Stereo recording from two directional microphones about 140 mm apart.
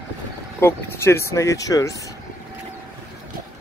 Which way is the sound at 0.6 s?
20° left (ahead or behind).